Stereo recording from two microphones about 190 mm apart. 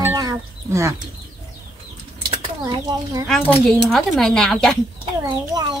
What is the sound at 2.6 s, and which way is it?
Speech, 15° right (ahead or behind).